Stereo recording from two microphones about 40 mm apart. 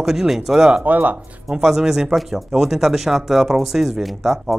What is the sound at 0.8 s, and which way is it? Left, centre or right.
Speech, right.